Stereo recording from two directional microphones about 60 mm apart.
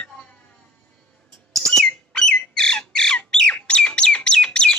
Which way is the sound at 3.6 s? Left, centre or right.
Centre.